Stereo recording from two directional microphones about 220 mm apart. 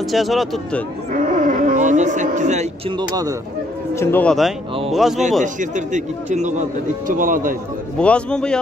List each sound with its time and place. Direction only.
0.1 s speech: centre (ahead or behind)
1.1 s a sound: 35° right (ahead or behind)
3.0 s speech: 15° right (ahead or behind)
3.9 s speech: 10° left (ahead or behind)
5.4 s speech: 35° right (ahead or behind)
8.0 s speech: 5° left (ahead or behind)